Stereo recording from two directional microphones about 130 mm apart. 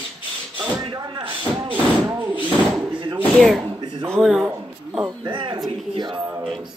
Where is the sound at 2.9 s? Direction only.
40° right (ahead or behind).